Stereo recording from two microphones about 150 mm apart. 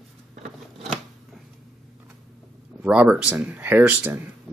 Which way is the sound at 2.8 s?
5° right (ahead or behind).